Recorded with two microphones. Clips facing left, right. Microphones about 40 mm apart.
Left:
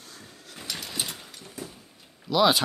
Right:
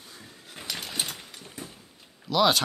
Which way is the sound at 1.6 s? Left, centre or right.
Right.